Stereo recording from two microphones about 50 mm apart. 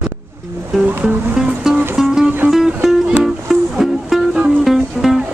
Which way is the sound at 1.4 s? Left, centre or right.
Centre.